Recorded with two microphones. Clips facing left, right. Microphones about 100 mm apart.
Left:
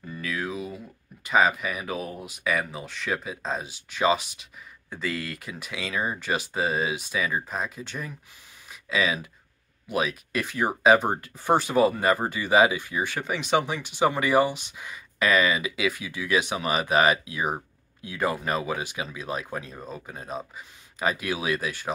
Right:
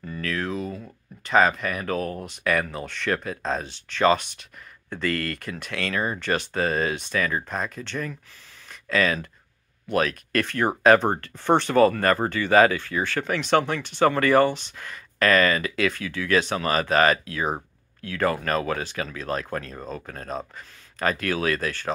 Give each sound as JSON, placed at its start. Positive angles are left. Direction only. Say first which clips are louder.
{"t": 0.2, "sound": "speech", "louder": "right 3 dB", "side_deg": 10}